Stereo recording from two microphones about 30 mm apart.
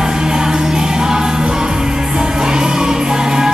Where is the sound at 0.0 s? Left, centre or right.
Right.